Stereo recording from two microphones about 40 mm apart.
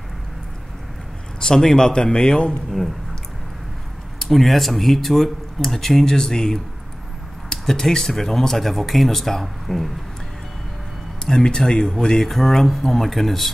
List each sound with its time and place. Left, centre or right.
1.4 s speech: centre
1.9 s a man's voice: centre
4.2 s speech: centre
11.2 s speech: centre
12.2 s speech: centre